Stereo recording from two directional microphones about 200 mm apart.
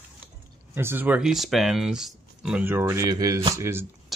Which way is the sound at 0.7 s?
10° right (ahead or behind).